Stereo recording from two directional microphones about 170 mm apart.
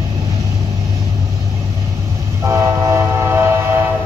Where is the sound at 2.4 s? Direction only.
15° right (ahead or behind).